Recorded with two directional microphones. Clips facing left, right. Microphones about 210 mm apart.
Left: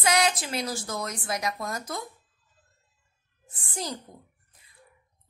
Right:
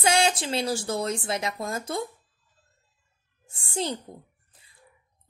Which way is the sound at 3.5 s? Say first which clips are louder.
Right 5 dB; 25° right (ahead or behind).